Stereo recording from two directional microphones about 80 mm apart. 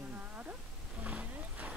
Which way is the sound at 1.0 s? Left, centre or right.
Centre.